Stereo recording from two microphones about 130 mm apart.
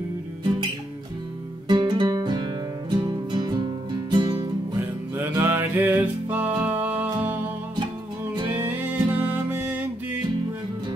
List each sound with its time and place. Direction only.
1.7 s music: 35° right (ahead or behind)
4.7 s music: 20° right (ahead or behind)
8.5 s music: 15° right (ahead or behind)